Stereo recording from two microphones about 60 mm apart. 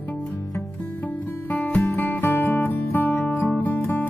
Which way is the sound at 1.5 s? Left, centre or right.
Left.